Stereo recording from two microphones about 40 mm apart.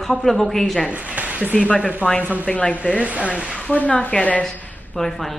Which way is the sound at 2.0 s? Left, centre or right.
Right.